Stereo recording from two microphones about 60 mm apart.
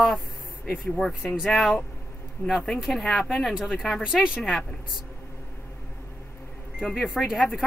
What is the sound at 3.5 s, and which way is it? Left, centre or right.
Speech, centre.